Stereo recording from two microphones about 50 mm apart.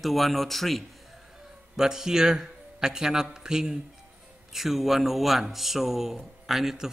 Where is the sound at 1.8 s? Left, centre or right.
Centre.